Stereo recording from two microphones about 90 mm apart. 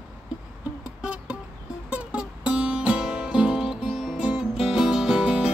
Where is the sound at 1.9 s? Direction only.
15° right (ahead or behind).